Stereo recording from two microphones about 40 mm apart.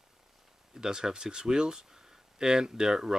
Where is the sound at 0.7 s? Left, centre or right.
Centre.